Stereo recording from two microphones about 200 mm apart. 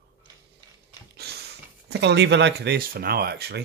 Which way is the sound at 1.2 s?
55° right (ahead or behind).